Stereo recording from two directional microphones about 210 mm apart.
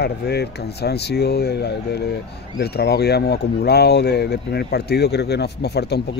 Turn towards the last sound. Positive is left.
turn(degrees=50)  # may be behind; listen again after turning